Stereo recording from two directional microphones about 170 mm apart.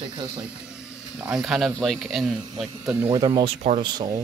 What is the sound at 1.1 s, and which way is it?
Speech, 5° right (ahead or behind).